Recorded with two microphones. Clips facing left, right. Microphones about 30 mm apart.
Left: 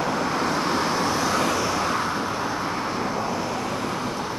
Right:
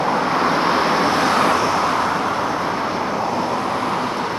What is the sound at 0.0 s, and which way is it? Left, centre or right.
Vehicle, right.